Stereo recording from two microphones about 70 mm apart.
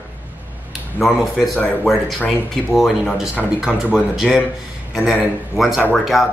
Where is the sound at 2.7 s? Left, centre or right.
Centre.